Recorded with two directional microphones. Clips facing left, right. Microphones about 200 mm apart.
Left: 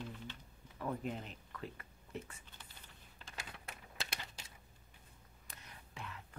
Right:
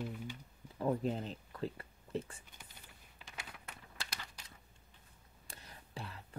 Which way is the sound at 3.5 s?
25° left (ahead or behind).